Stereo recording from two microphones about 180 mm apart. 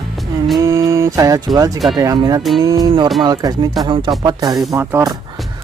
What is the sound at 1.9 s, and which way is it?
Speech, 20° right (ahead or behind).